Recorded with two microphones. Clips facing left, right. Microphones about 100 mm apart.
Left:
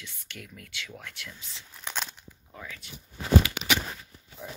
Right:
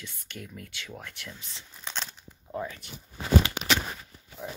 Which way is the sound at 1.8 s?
5° left (ahead or behind).